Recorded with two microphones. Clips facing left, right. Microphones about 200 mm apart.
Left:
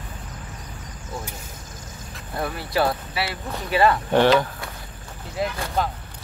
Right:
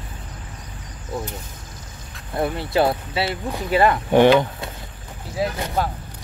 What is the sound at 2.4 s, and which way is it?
Speech, 25° right (ahead or behind).